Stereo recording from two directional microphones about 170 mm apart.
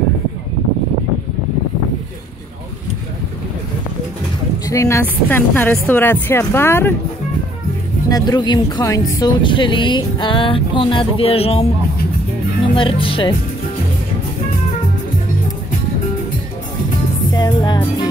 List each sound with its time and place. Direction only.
4.6 s speech: 20° left (ahead or behind)
8.1 s speech: 25° left (ahead or behind)
12.7 s speech: 30° left (ahead or behind)
17.3 s music: 25° left (ahead or behind)